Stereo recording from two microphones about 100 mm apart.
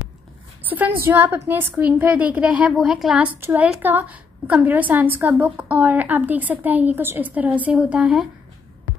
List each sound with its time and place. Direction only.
0.7 s a woman's voice: 20° right (ahead or behind)
3.3 s a woman's voice: 20° right (ahead or behind)
7.7 s speech: 5° right (ahead or behind)